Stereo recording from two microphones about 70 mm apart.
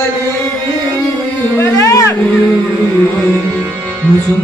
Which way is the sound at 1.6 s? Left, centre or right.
Left.